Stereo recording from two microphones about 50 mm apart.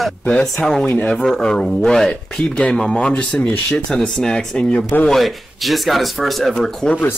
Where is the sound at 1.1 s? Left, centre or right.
Centre.